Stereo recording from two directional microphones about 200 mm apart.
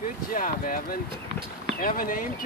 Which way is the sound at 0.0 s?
40° left (ahead or behind).